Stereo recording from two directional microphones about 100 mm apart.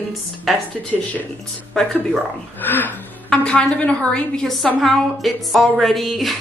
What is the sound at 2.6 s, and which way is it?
A woman's voice, 20° left (ahead or behind).